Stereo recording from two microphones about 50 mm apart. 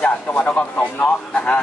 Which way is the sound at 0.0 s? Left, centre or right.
Left.